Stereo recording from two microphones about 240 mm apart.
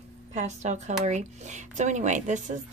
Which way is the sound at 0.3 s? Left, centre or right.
Right.